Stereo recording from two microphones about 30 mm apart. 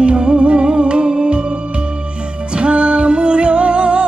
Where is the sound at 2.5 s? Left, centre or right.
Right.